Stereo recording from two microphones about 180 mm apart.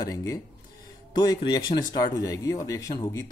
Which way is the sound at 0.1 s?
20° left (ahead or behind).